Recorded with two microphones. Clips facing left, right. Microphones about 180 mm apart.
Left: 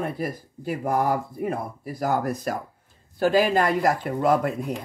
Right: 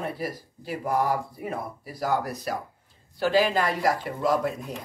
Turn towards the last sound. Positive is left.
turn(degrees=55)  # may be behind; listen again after turning